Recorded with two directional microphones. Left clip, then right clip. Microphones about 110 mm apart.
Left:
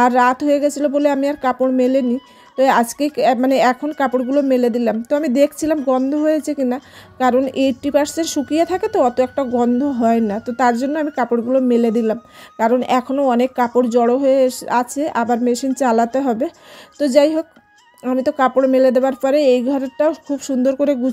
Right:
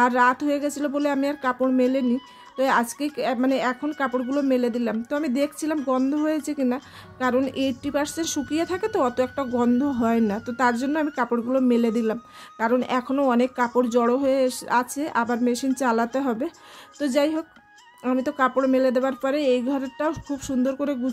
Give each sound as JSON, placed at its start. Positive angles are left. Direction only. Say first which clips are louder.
{"t": 0.0, "sound": "speech", "louder": "left 6 dB", "side_deg": 30}
{"t": 4.3, "sound": "speech", "louder": "left 7 dB", "side_deg": 30}
{"t": 11.2, "sound": "a man's voice", "louder": "left 7 dB", "side_deg": 10}
{"t": 11.6, "sound": "speech", "louder": "left 6 dB", "side_deg": 25}
{"t": 13.7, "sound": "speech", "louder": "left 6 dB", "side_deg": 15}